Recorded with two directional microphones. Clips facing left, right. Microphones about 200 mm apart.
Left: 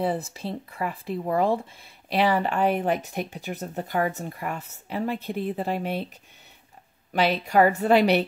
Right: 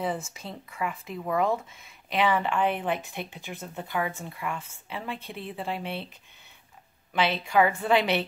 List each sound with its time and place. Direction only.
0.0 s speech: 35° left (ahead or behind)
7.1 s speech: 40° left (ahead or behind)